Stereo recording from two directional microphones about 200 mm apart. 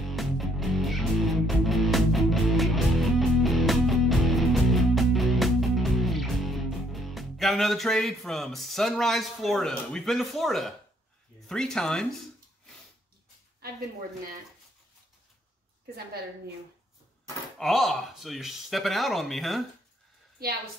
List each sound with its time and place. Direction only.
0.1 s music: centre (ahead or behind)
11.4 s speech: 5° left (ahead or behind)
13.6 s speech: 50° right (ahead or behind)
17.6 s speech: centre (ahead or behind)